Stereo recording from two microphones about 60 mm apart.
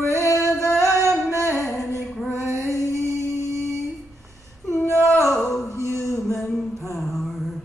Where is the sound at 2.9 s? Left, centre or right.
Right.